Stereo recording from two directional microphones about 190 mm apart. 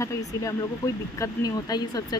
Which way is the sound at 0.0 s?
15° left (ahead or behind).